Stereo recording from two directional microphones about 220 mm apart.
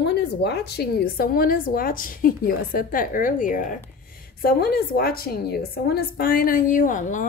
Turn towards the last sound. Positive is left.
turn(degrees=35)  # may be behind; listen again after turning